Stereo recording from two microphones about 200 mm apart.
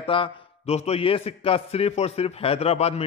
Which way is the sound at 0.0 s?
25° left (ahead or behind).